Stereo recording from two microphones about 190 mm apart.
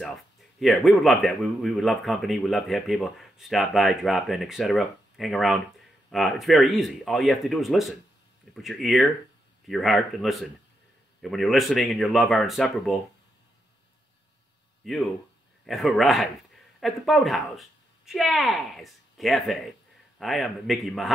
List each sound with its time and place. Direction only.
0.6 s speech: centre (ahead or behind)
14.8 s speech: centre (ahead or behind)